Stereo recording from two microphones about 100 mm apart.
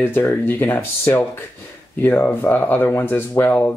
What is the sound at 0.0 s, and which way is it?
Speech, 20° left (ahead or behind).